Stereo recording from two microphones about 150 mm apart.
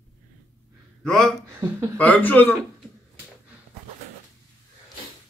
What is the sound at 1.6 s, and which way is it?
Speech, 20° right (ahead or behind).